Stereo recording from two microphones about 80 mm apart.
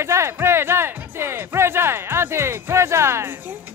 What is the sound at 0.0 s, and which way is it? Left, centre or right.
Music, right.